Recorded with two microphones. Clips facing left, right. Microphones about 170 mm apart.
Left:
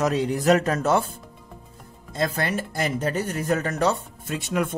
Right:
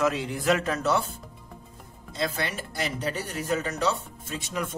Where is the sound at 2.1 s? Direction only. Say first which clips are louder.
Left 5 dB; 45° left (ahead or behind).